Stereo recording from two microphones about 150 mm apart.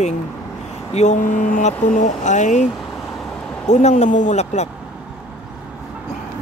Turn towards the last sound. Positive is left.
turn(degrees=50)  # may be behind; listen again after turning